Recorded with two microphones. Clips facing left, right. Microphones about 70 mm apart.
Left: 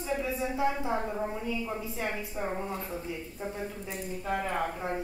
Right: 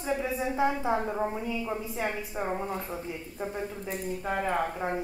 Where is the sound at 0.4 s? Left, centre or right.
Right.